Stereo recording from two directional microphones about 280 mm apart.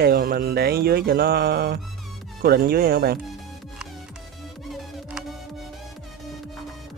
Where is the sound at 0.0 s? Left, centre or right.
Right.